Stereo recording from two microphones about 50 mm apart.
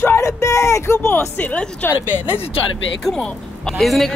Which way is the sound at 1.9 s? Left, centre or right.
Right.